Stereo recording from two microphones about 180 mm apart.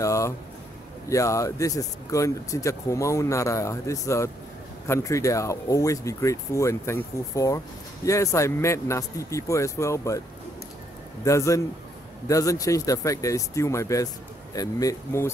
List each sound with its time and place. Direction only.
0.0 s a sound: 15° left (ahead or behind)
1.0 s speech: 15° left (ahead or behind)
11.2 s speech: 15° left (ahead or behind)